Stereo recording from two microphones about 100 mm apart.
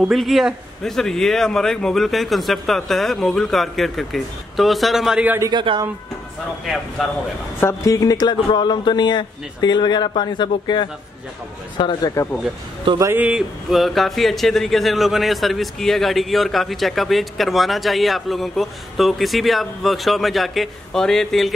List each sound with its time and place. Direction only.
0.0 s a man's voice: centre (ahead or behind)
5.5 s speech: 50° right (ahead or behind)
6.6 s a man's voice: centre (ahead or behind)
7.6 s speech: 35° left (ahead or behind); by 12.1 s 50° left (ahead or behind)
12.9 s speech: 55° right (ahead or behind)
13.2 s a man's voice: 5° right (ahead or behind)